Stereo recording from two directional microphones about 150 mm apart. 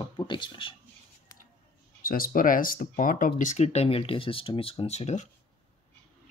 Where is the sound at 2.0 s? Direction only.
75° left (ahead or behind).